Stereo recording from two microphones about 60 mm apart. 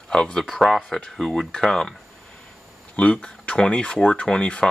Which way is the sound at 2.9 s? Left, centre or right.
Left.